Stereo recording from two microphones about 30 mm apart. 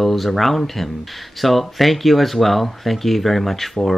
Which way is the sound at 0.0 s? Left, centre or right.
Centre.